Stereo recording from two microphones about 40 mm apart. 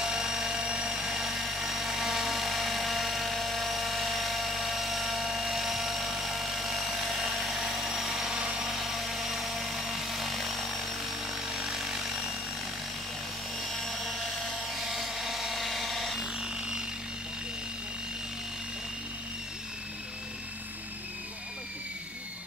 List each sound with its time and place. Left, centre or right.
0.0 s helicopter: centre
8.4 s a sound: right
8.6 s helicopter: centre
11.4 s sawing: centre
13.6 s helicopter: centre
16.2 s a sound: centre